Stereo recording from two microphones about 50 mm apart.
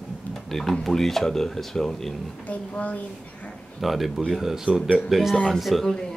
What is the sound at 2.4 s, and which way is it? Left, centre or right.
Speech, left.